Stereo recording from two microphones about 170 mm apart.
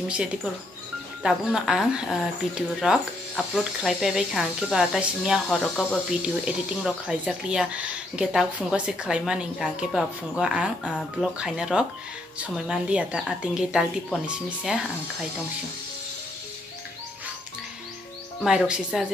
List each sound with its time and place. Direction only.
1.2 s speech: 5° right (ahead or behind)
10.8 s speech: 5° left (ahead or behind)
18.4 s speech: 5° right (ahead or behind)